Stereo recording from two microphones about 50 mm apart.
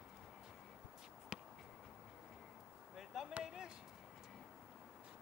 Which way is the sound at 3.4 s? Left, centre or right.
Centre.